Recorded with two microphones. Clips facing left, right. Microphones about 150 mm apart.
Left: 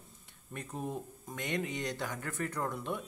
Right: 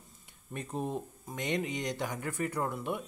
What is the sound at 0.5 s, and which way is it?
Speech, 20° right (ahead or behind).